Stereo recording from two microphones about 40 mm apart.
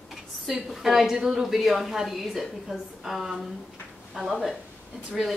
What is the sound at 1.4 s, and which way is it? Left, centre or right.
A woman's voice, centre.